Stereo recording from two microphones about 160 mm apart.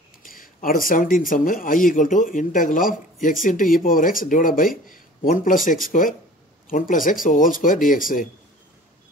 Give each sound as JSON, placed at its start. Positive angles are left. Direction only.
{"t": 0.2, "sound": "speech", "side_deg": 60}